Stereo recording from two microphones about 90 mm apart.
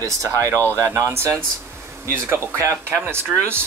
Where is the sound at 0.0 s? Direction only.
35° right (ahead or behind).